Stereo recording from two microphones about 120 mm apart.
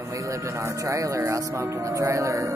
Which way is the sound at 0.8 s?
25° right (ahead or behind).